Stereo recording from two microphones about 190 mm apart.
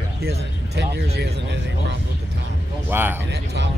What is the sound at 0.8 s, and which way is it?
Speech, 60° right (ahead or behind).